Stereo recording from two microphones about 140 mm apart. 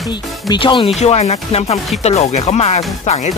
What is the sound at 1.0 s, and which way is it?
Speech, 50° left (ahead or behind).